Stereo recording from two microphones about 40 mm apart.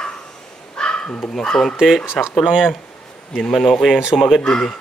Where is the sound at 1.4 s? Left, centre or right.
Centre.